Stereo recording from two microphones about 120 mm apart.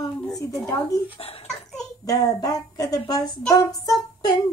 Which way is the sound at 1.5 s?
5° left (ahead or behind).